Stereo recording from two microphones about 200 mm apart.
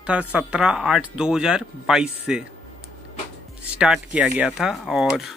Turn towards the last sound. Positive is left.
turn(degrees=0)  # may be behind; listen again after turning